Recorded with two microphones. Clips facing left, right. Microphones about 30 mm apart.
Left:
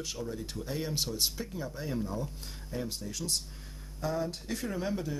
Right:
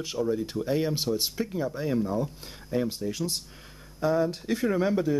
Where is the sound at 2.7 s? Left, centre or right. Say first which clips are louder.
Right 9 dB; right.